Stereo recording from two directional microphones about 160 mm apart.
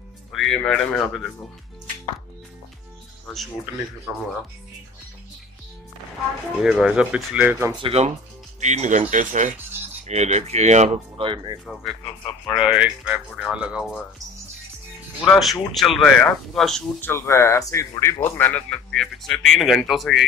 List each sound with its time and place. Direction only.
0.3 s a man's voice: centre (ahead or behind)
4.1 s speech: 10° right (ahead or behind)
6.6 s speech: 5° right (ahead or behind)
7.8 s speech: 40° right (ahead or behind)
11.2 s speech: 30° right (ahead or behind)
11.6 s a man's voice: centre (ahead or behind)
15.2 s a man's voice: centre (ahead or behind)
17.1 s a man's voice: 15° left (ahead or behind); by 20.2 s centre (ahead or behind)